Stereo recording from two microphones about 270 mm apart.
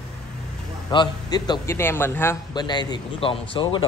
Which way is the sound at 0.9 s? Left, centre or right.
Centre.